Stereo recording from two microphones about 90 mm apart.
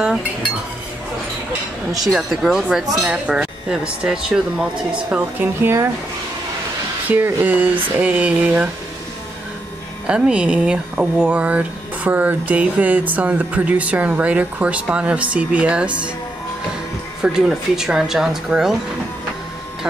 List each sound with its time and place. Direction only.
2.0 s speech: centre (ahead or behind)
5.1 s speech: 25° right (ahead or behind)
7.1 s speech: 20° right (ahead or behind)
10.0 s speech: 10° right (ahead or behind)
17.2 s speech: 5° right (ahead or behind)